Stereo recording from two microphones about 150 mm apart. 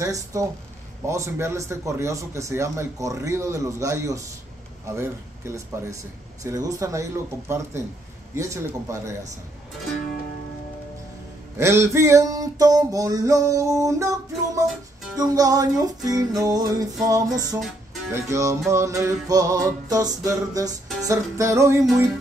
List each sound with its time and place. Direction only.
0.0 s music: 20° right (ahead or behind)
4.8 s speech: 15° right (ahead or behind)
6.4 s music: 25° right (ahead or behind)
11.5 s music: 20° right (ahead or behind)